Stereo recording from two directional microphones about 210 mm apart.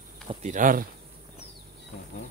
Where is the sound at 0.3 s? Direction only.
35° right (ahead or behind).